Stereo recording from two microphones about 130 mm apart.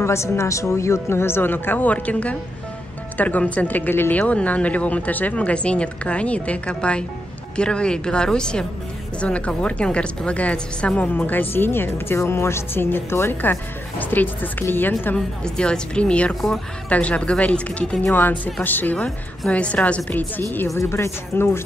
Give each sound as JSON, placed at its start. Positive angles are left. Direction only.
{"t": 0.0, "sound": "a woman's voice", "side_deg": 20}